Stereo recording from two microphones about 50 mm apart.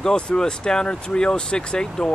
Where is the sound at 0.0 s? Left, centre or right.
Centre.